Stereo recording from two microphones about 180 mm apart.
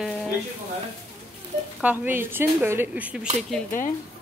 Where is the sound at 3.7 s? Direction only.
50° left (ahead or behind).